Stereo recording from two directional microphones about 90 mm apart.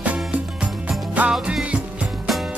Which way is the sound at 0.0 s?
15° right (ahead or behind).